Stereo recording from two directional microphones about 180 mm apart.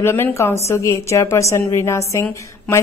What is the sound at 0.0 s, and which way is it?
A woman's voice, 15° left (ahead or behind).